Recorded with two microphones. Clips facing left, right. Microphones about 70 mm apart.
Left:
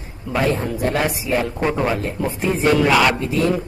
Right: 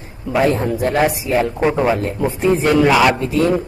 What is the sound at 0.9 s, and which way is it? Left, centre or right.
A man's voice, centre.